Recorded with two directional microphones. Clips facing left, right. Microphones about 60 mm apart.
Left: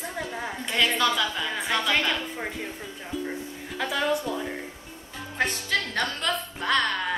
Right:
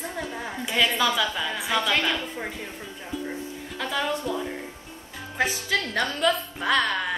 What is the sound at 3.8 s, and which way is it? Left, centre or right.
Speech, centre.